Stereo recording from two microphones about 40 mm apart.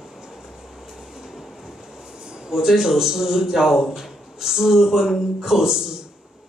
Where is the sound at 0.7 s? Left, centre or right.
Centre.